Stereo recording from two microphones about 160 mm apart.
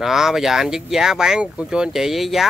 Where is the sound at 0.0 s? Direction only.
Centre (ahead or behind).